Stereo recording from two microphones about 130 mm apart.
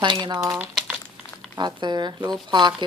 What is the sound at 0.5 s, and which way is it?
Speech, 10° right (ahead or behind).